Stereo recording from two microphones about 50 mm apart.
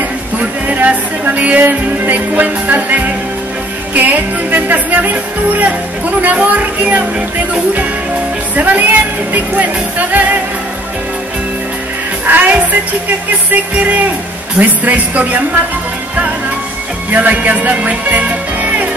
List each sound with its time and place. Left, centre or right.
0.8 s speech: right
8.5 s speech: right
12.3 s speech: right
17.1 s speech: right